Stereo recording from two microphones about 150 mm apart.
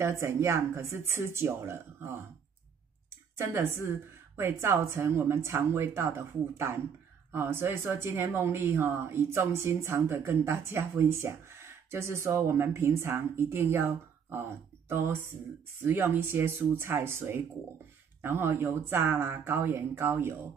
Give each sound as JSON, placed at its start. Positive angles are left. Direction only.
{"t": 0.0, "sound": "speech", "side_deg": -20}
{"t": 3.3, "sound": "speech", "side_deg": -20}